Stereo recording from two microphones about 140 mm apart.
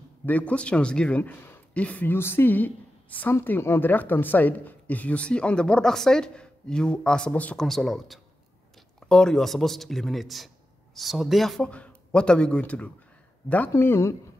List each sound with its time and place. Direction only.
0.2 s speech: 10° left (ahead or behind)